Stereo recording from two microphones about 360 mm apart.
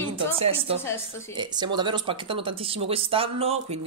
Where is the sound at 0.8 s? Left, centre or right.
Centre.